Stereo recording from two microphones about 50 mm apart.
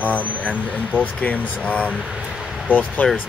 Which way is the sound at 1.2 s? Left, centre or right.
Left.